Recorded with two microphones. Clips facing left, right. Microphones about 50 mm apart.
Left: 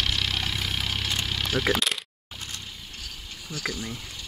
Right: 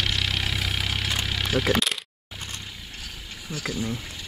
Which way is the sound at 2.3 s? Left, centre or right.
Centre.